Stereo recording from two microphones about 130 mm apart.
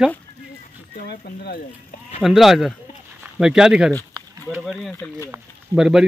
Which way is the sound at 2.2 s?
Centre (ahead or behind).